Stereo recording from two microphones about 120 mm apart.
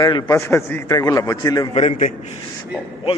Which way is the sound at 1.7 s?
70° left (ahead or behind).